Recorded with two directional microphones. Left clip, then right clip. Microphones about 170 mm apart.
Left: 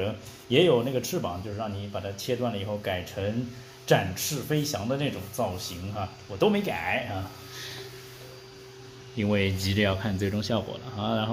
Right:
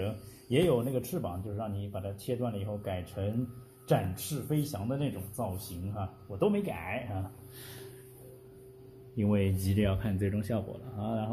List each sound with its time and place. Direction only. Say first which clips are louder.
0.0 s speech: left 6 dB; centre (ahead or behind)
4.3 s speech: left 5 dB; 10° right (ahead or behind)
9.1 s speech: left 5 dB; 10° right (ahead or behind)
9.8 s speech: left 6 dB; 5° left (ahead or behind)